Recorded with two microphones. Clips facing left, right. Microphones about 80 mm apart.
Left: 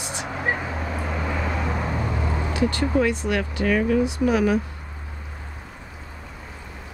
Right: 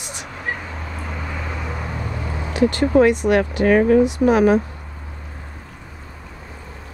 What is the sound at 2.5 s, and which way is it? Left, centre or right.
Speech, right.